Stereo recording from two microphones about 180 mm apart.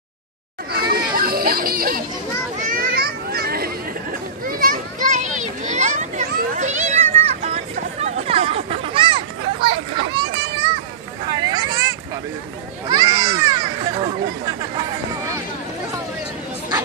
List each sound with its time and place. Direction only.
0.7 s children playing: 60° right (ahead or behind); by 7.5 s 40° right (ahead or behind)
8.0 s a sound: 35° right (ahead or behind)
9.9 s children playing: 30° right (ahead or behind)
11.2 s hubbub: 25° right (ahead or behind)
12.8 s children playing: 20° right (ahead or behind)